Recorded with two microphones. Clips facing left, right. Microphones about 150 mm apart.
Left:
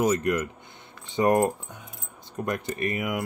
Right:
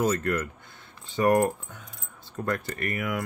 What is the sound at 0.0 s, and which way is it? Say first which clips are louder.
Speech: left 2 dB; 15° left (ahead or behind).